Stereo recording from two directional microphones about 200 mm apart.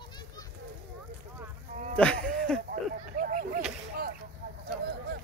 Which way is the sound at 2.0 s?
5° left (ahead or behind).